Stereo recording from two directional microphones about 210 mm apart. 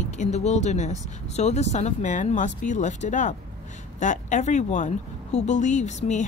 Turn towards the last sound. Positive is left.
turn(degrees=35)  # may be behind; listen again after turning